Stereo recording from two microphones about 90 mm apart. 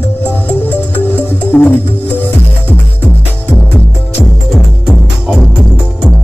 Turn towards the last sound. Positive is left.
turn(degrees=-5)  # may be behind; listen again after turning